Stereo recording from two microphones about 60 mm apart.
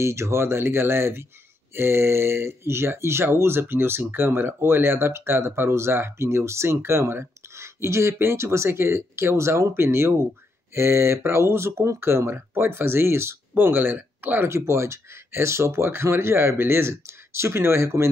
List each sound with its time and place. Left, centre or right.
0.0 s speech: right
14.5 s speech: right